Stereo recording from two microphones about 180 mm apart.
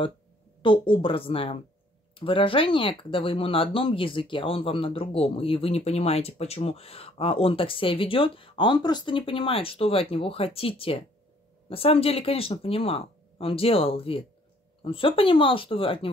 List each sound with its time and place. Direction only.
0.6 s speech: 30° left (ahead or behind)